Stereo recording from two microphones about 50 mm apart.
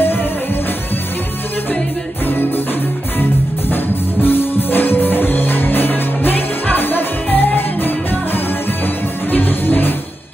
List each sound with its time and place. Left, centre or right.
0.0 s music: left
2.2 s music: left
3.7 s music: left